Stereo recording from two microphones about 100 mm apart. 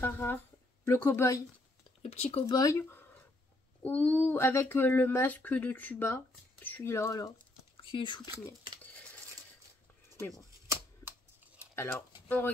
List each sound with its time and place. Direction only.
0.0 s a sound: 20° left (ahead or behind)
0.8 s speech: 20° left (ahead or behind)
2.0 s speech: 90° left
2.4 s speech: 35° left (ahead or behind)
7.7 s speech: 55° left (ahead or behind)
10.3 s typewriter: 30° right (ahead or behind)
11.7 s speech: 25° left (ahead or behind)